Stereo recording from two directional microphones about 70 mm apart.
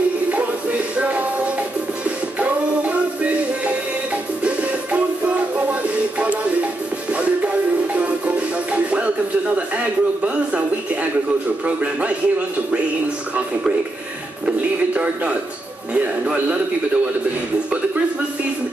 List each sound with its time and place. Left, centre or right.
0.3 s music: right
10.2 s music: centre
11.6 s music: centre
15.9 s speech: centre